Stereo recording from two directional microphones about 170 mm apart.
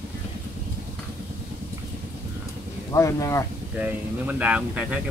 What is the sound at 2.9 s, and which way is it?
Speech, 20° left (ahead or behind).